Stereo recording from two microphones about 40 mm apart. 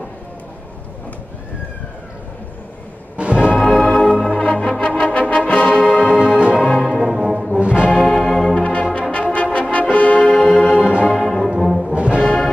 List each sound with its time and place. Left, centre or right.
3.2 s music: right
3.5 s music: centre
4.3 s music: left
5.5 s brass instrument: left
6.0 s music: centre
6.7 s brass instrument: centre
7.6 s music: right
7.9 s music: centre
8.5 s brass instrument: left
10.2 s music: centre
11.1 s brass instrument: centre
11.6 s brass instrument: centre
11.9 s brass instrument: right
12.2 s music: left